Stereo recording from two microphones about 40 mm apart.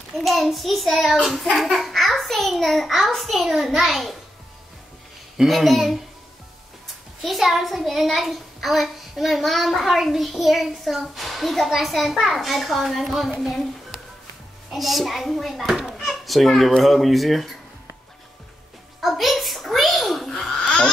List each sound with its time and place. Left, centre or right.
0.1 s a child's voice: centre
5.4 s a child's voice: centre
7.2 s a child's voice: centre
14.7 s a child's voice: centre
18.9 s a sound: centre
20.5 s a sound: left